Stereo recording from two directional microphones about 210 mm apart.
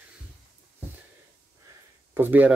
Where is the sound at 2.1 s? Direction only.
10° right (ahead or behind).